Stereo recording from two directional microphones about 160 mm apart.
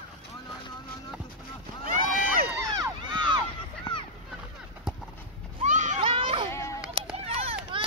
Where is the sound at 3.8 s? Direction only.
30° left (ahead or behind).